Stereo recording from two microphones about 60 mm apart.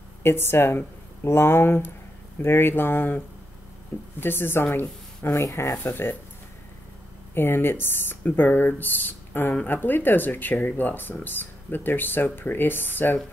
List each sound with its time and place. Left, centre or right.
0.2 s speech: left
4.2 s speech: left
5.3 s speech: left
5.8 s speech: left
7.3 s speech: left